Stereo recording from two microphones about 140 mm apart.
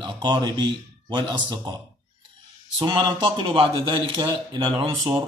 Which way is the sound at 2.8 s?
30° right (ahead or behind).